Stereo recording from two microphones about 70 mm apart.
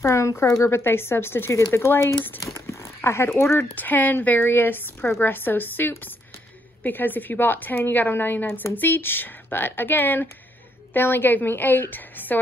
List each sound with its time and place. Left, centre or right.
0.0 s speech: left
2.5 s a sound: left
3.7 s a woman's voice: left